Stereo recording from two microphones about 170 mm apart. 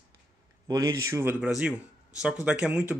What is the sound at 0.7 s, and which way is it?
Speech, 20° right (ahead or behind).